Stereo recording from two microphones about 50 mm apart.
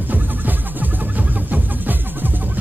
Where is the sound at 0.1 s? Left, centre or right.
Right.